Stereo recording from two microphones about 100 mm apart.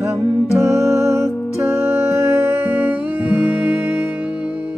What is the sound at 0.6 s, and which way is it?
Music, 25° right (ahead or behind).